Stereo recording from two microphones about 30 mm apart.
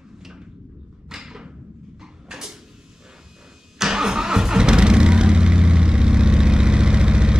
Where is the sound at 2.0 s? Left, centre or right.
Right.